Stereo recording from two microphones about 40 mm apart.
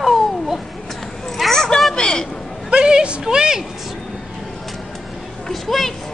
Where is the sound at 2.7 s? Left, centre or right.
Right.